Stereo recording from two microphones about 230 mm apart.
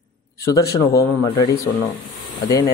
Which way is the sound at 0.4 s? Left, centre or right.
Centre.